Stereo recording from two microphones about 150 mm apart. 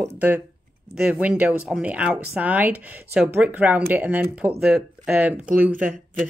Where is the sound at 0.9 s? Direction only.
5° right (ahead or behind).